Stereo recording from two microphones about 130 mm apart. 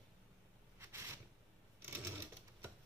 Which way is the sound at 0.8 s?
20° right (ahead or behind).